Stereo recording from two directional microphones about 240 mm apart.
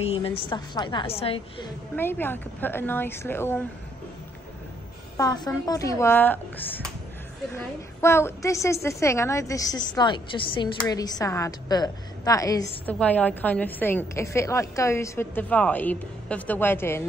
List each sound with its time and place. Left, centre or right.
0.0 s a woman's voice: left
2.0 s a woman's voice: centre
5.1 s a woman's voice: centre